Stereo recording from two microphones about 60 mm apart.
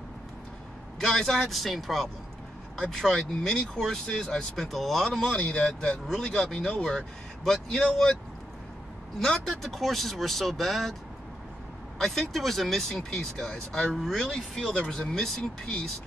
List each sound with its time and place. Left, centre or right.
1.0 s speech: centre
5.3 s speech: centre
9.2 s speech: centre
12.0 s speech: centre